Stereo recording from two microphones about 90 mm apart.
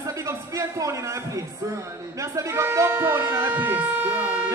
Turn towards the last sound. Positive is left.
turn(degrees=-20)  # may be behind; listen again after turning